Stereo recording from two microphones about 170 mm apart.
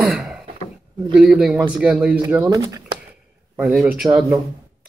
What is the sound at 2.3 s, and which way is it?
Speech, 15° right (ahead or behind).